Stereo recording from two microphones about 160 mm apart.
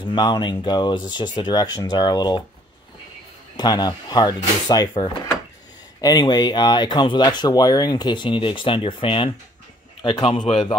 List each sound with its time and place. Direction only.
0.0 s speech: 25° left (ahead or behind)
3.5 s a man's voice: 25° left (ahead or behind)